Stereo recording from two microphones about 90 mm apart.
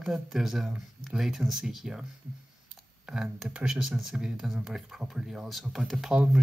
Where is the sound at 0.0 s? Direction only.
5° right (ahead or behind).